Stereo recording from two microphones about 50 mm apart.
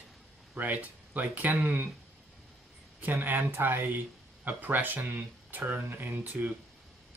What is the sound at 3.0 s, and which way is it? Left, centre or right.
Speech, right.